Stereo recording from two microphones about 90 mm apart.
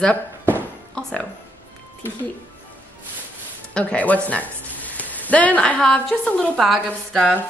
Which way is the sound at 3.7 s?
10° left (ahead or behind).